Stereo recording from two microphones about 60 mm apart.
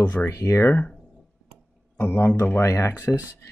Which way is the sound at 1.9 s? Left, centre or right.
Left.